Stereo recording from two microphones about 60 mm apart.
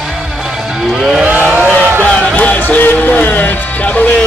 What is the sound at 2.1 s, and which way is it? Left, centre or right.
Music, centre.